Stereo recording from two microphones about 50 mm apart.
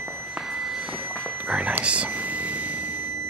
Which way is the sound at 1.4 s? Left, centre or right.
Right.